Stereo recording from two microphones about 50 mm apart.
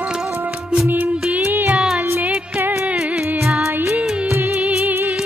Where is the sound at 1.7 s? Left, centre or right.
Centre.